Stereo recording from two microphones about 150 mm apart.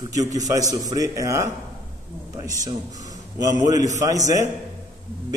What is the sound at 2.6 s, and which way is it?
A man's voice, 25° right (ahead or behind).